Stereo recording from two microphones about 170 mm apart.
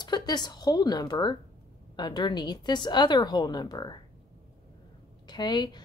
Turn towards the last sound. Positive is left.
turn(degrees=25)  # may be behind; listen again after turning